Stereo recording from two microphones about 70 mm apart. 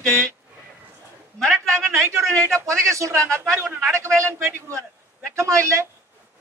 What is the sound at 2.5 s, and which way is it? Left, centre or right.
Speech, right.